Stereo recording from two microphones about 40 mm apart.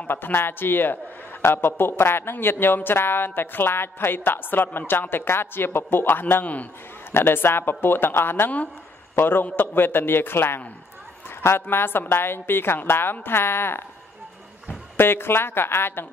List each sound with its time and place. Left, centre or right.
0.1 s speech: left
1.4 s a woman's voice: left
2.4 s speech: left
6.4 s a man's voice: left
7.1 s a woman's voice: left
11.2 s a woman's voice: left
15.0 s a woman's voice: left